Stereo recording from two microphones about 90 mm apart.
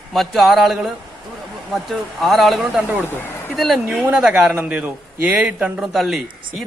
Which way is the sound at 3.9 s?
5° right (ahead or behind).